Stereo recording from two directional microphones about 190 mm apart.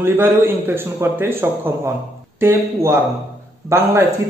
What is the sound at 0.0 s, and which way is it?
A man's voice, 10° right (ahead or behind).